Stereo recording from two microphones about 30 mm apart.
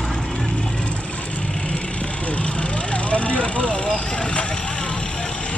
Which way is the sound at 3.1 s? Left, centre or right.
Left.